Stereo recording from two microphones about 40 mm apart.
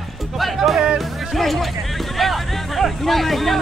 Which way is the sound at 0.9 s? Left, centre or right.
Centre.